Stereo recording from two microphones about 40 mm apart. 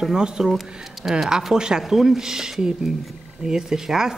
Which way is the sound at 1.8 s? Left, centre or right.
Centre.